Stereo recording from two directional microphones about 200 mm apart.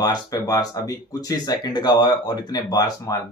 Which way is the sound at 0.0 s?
20° left (ahead or behind).